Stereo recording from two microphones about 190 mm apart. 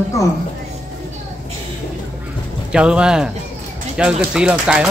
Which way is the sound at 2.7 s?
5° right (ahead or behind).